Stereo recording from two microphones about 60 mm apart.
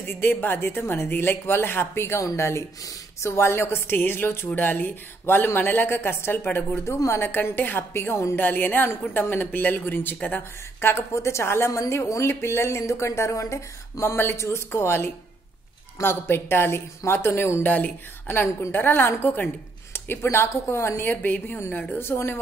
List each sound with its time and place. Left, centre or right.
0.0 s a woman's voice: left
4.6 s a woman's voice: left
8.4 s a woman's voice: left
10.8 s speech: left
14.1 s a woman's voice: left
17.6 s a woman's voice: left
21.1 s a woman's voice: left